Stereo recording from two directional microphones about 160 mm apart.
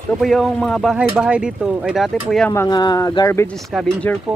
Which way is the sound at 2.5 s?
25° left (ahead or behind).